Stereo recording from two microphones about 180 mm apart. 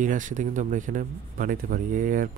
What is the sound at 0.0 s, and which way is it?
Speech, 45° right (ahead or behind).